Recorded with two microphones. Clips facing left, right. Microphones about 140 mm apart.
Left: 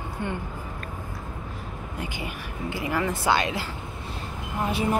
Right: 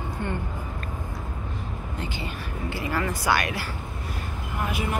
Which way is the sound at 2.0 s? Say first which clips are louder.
Even; 15° left (ahead or behind).